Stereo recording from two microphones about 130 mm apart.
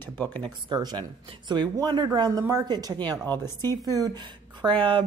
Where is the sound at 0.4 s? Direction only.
35° right (ahead or behind).